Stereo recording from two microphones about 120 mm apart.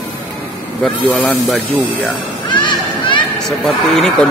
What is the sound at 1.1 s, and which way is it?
Speech, 15° left (ahead or behind).